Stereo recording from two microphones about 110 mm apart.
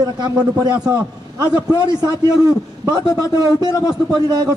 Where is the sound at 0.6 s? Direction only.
35° right (ahead or behind).